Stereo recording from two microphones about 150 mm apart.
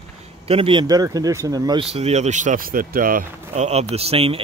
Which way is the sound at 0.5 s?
35° right (ahead or behind).